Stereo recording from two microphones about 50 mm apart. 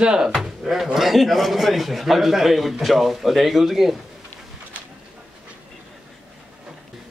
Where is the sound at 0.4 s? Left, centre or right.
Centre.